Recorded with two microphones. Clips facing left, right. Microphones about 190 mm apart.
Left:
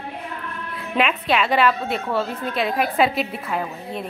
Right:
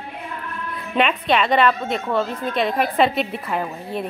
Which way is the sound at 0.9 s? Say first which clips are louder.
Right 2 dB; centre (ahead or behind).